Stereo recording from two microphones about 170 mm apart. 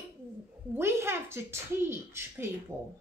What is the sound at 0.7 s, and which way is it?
A woman's voice, 15° right (ahead or behind).